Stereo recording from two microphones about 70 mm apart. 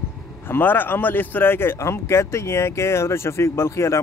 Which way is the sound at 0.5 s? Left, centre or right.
Left.